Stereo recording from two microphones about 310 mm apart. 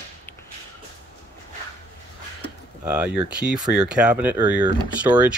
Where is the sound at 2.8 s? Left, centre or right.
Centre.